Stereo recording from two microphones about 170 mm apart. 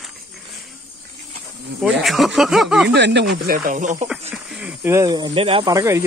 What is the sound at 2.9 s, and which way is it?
Speech, 90° right.